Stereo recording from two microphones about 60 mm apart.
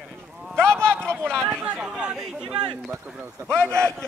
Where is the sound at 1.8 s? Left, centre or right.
Centre.